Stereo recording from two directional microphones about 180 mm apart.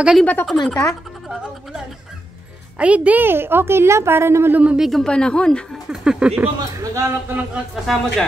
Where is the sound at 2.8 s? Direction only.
10° right (ahead or behind).